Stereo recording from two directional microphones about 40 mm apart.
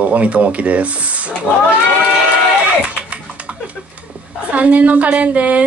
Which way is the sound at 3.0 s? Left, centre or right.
Right.